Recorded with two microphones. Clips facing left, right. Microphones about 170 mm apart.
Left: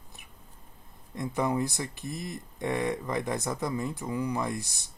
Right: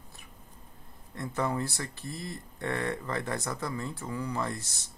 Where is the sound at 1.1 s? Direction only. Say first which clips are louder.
Left 3 dB; 15° left (ahead or behind).